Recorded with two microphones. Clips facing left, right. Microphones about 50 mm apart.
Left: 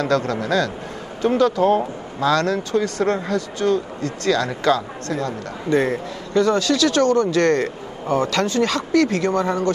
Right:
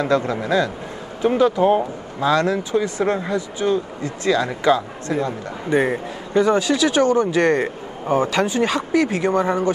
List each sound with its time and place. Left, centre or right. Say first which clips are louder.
0.0 s speech: right 1 dB; centre